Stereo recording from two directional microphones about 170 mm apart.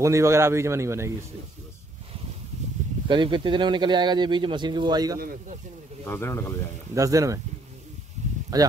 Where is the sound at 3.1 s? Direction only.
30° right (ahead or behind).